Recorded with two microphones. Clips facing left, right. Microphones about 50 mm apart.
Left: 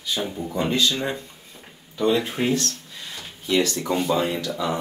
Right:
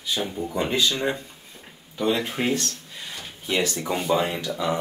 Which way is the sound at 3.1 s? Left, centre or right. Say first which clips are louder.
Left 3 dB; right.